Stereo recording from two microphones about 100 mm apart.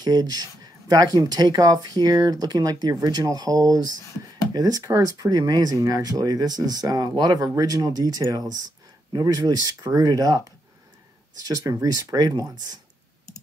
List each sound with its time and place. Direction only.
0.0 s speech: 45° right (ahead or behind)